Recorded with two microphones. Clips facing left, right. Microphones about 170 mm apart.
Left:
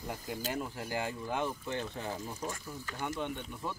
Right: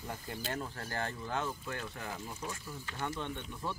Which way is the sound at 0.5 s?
15° left (ahead or behind).